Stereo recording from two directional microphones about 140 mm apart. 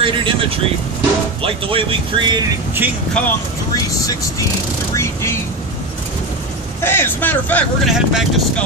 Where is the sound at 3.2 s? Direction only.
10° left (ahead or behind).